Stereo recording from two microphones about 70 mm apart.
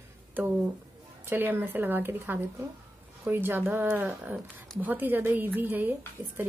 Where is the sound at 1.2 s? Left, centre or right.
Right.